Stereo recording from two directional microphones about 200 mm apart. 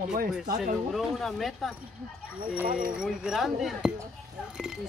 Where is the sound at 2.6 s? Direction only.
45° right (ahead or behind).